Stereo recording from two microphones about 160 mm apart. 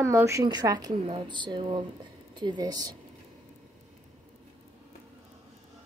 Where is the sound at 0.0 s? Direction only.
15° right (ahead or behind).